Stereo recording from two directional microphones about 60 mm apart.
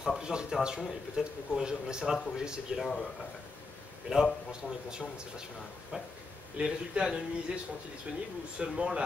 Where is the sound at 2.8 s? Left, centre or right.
Centre.